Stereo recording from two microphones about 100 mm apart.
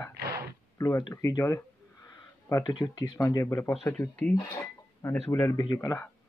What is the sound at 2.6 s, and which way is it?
Speech, 50° left (ahead or behind).